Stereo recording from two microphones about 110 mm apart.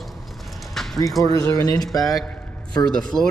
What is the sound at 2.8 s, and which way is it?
Speech, 5° left (ahead or behind).